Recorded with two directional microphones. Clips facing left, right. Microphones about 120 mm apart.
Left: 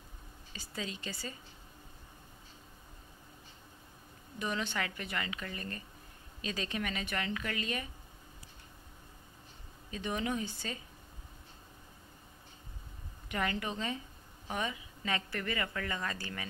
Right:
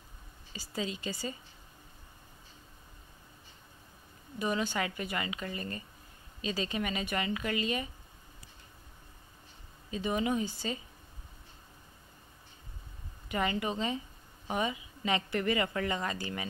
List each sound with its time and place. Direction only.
0.5 s a woman's voice: 10° right (ahead or behind)
4.4 s a woman's voice: 10° right (ahead or behind)
9.9 s a woman's voice: 10° right (ahead or behind)
13.3 s a woman's voice: 10° right (ahead or behind)